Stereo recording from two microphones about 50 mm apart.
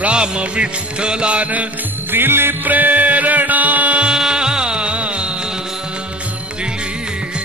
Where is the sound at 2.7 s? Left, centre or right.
Right.